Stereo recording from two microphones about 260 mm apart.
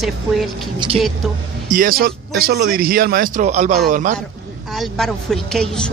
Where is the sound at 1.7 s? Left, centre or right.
Right.